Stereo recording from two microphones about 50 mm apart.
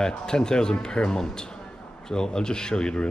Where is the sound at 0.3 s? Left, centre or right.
Centre.